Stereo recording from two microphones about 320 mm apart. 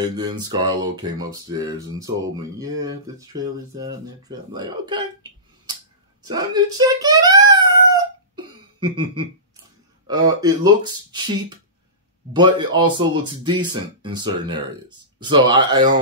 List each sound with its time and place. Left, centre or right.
0.0 s speech: centre
6.2 s a sound: centre
10.0 s speech: centre